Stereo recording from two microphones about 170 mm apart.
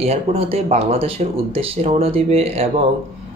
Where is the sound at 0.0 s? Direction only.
35° right (ahead or behind).